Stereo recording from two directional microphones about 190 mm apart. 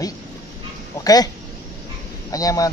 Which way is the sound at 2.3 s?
20° left (ahead or behind).